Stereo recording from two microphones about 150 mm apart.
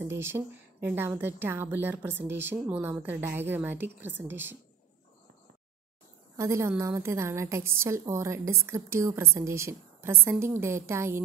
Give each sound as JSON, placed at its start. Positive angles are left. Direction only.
{"t": 0.0, "sound": "a woman's voice", "side_deg": -15}
{"t": 6.3, "sound": "a woman's voice", "side_deg": -20}